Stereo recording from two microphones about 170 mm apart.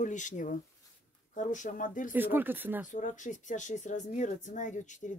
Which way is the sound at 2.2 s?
10° right (ahead or behind).